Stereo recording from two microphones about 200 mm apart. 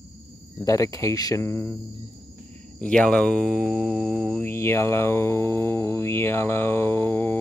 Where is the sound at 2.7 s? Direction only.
5° left (ahead or behind).